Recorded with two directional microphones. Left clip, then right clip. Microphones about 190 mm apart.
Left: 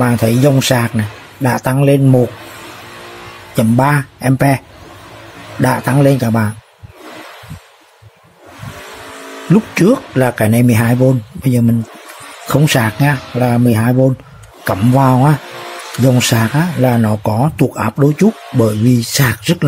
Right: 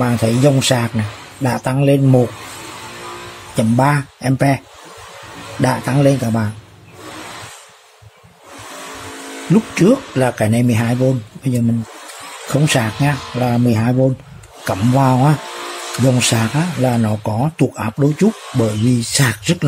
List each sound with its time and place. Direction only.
0.0 s speech: 15° left (ahead or behind)
3.5 s speech: 15° left (ahead or behind)
9.5 s speech: 15° left (ahead or behind)